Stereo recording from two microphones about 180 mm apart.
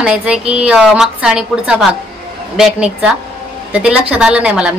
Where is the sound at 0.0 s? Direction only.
5° right (ahead or behind).